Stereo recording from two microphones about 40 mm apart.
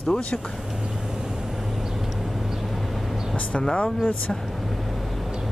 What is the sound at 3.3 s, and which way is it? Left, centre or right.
Speech, left.